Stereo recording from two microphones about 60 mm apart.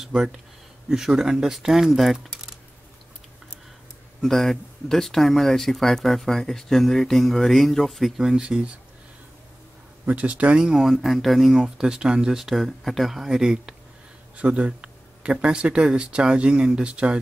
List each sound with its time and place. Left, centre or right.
0.1 s speech: centre
4.2 s speech: centre
8.2 s speech: centre
10.0 s speech: right
10.6 s speech: centre
14.3 s speech: right